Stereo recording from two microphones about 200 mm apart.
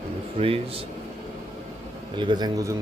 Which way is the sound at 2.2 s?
20° right (ahead or behind).